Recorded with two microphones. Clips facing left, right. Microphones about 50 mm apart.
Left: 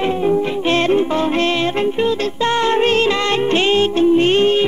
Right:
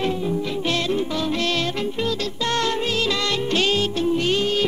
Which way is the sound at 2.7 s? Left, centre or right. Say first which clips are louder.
Left 8 dB; left.